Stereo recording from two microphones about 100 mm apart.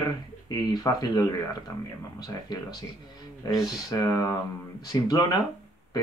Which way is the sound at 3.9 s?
40° left (ahead or behind).